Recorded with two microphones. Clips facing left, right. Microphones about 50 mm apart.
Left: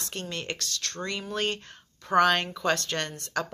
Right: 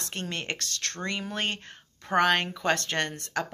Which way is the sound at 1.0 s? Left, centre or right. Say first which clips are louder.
Left 1 dB; right.